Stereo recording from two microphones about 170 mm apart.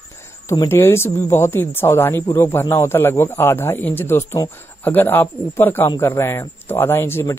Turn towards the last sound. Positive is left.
turn(degrees=15)  # may be behind; listen again after turning